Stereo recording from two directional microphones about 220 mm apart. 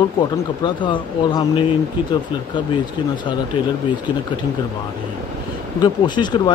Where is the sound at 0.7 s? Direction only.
20° left (ahead or behind).